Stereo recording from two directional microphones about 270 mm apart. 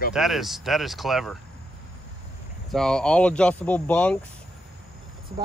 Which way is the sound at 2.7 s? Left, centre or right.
Centre.